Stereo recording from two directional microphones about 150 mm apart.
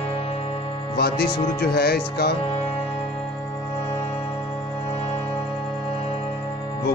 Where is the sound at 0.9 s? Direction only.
90° left.